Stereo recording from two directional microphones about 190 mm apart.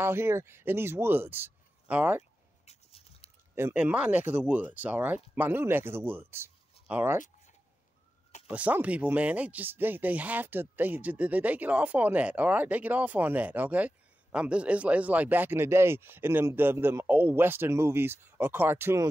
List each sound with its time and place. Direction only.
0.0 s speech: 10° right (ahead or behind)
2.6 s a sound: 35° left (ahead or behind)
3.5 s speech: 10° right (ahead or behind)
8.5 s speech: 5° right (ahead or behind)